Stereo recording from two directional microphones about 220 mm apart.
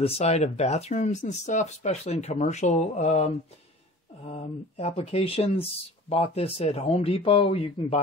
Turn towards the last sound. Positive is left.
turn(degrees=25)  # may be behind; listen again after turning